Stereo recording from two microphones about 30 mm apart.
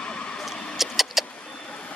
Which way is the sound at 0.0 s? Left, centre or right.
Left.